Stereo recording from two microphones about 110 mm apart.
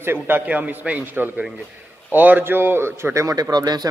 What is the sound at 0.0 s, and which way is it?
A man's voice, 20° right (ahead or behind).